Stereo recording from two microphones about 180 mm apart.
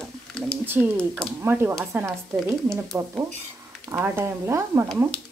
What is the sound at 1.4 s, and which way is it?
Speech, 15° right (ahead or behind).